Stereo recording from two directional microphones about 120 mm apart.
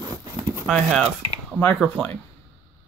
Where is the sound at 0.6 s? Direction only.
Centre (ahead or behind).